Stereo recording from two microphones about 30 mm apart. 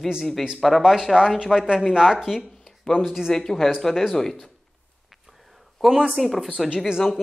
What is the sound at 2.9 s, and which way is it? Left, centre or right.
Speech, left.